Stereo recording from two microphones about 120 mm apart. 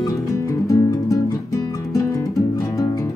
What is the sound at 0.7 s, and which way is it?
Music, 30° left (ahead or behind).